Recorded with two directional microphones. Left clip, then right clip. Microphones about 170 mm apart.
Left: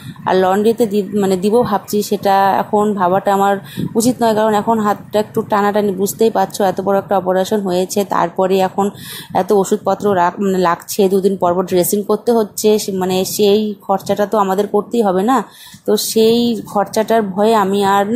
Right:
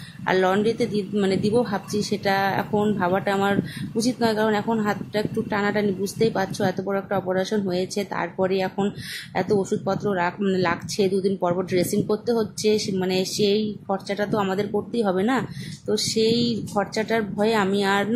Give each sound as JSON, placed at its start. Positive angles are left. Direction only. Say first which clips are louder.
{"t": 0.2, "sound": "speech", "louder": "left 8 dB", "side_deg": 20}